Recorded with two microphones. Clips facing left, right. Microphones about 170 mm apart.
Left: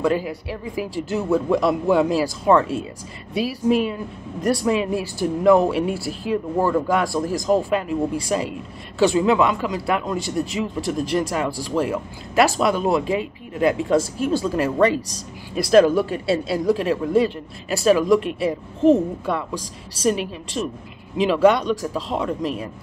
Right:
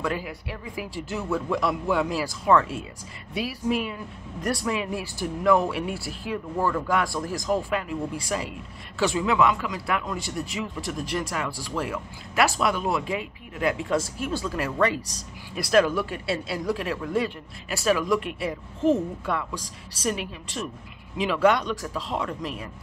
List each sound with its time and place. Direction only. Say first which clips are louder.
0.0 s speech: left 8 dB; 30° left (ahead or behind)